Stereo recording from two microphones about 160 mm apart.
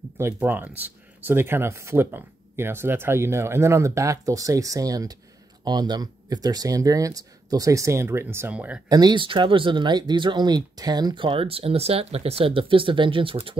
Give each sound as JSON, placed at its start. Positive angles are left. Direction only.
{"t": 0.2, "sound": "speech", "side_deg": -15}
{"t": 8.8, "sound": "speech", "side_deg": -25}